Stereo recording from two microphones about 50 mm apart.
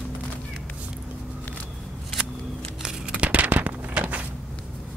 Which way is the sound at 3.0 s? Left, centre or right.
Right.